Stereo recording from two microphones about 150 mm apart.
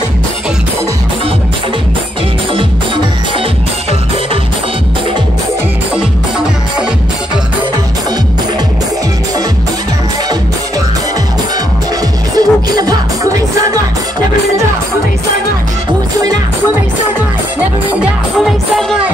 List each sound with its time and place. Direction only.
12.4 s music: 25° right (ahead or behind)
18.4 s music: centre (ahead or behind)